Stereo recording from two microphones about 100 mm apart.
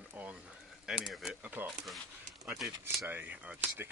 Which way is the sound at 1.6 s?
20° right (ahead or behind).